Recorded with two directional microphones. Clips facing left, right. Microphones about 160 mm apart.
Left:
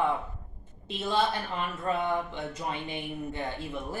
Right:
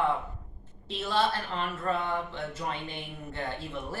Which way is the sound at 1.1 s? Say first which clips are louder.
Even; 15° left (ahead or behind).